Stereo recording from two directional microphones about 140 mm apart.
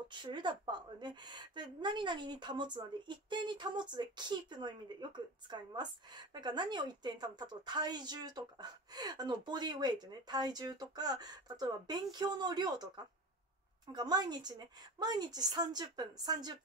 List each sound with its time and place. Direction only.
0.1 s a woman's voice: 35° right (ahead or behind)